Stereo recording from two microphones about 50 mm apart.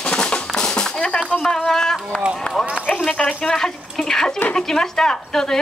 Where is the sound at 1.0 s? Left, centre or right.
Left.